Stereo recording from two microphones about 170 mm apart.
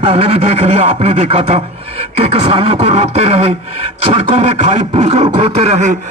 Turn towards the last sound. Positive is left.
turn(degrees=-40)  # may be behind; listen again after turning